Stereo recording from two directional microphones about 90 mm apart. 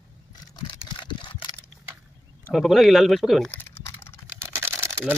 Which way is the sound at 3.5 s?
25° left (ahead or behind).